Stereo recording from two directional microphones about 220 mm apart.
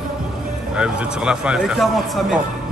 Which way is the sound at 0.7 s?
5° right (ahead or behind).